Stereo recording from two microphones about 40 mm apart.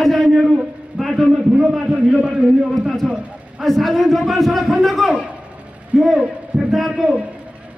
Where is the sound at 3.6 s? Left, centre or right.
Centre.